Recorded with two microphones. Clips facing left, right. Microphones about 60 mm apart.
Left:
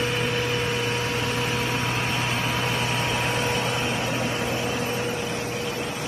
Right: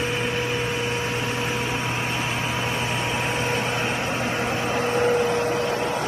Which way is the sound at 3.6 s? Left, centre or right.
Right.